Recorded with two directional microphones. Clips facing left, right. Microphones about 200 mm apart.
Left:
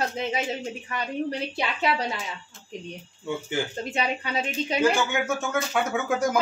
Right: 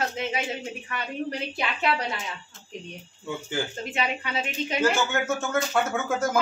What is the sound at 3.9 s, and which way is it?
Speech, 35° left (ahead or behind).